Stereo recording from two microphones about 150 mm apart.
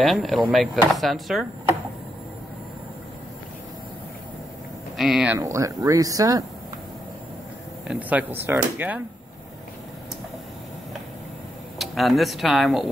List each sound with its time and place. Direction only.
0.0 s speech: centre (ahead or behind)
4.9 s speech: 5° right (ahead or behind)
5.4 s speech: 20° right (ahead or behind)
7.9 s speech: 10° right (ahead or behind)
11.8 s speech: centre (ahead or behind)